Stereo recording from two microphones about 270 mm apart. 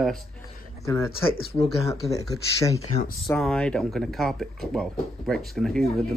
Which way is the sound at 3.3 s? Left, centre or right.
Centre.